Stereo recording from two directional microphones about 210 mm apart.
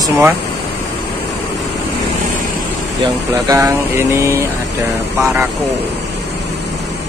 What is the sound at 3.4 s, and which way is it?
Speech, 15° right (ahead or behind).